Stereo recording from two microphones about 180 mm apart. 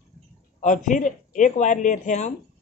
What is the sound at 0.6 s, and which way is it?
Speech, 45° left (ahead or behind).